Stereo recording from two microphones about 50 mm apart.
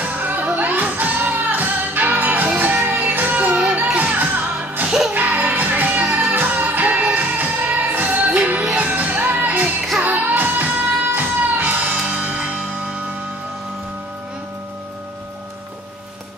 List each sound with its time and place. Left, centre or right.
0.0 s music: right